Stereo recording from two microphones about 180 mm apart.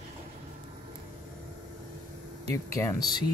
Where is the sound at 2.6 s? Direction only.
15° left (ahead or behind).